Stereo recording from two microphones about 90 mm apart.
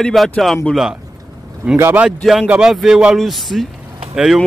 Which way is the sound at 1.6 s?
20° right (ahead or behind).